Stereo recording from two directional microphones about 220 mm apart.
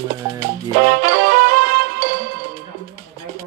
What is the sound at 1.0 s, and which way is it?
Music, 45° right (ahead or behind).